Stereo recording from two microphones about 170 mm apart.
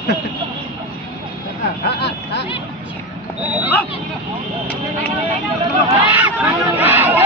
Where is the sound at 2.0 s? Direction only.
80° left.